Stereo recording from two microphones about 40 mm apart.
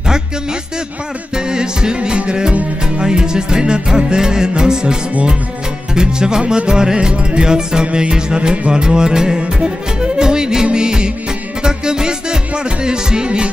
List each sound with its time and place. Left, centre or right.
1.3 s music: centre
5.9 s music: centre